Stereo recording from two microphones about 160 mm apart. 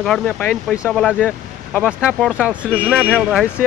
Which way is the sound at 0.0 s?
5° left (ahead or behind).